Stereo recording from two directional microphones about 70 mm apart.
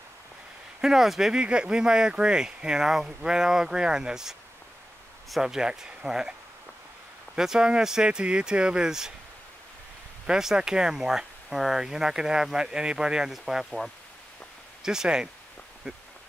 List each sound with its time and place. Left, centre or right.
0.7 s speech: centre
7.3 s speech: centre
10.2 s speech: centre